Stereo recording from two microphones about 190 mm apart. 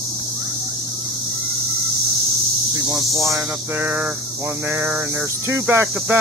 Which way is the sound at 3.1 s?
15° right (ahead or behind).